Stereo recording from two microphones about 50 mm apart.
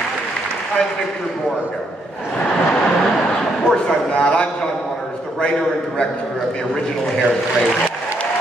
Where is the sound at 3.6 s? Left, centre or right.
Centre.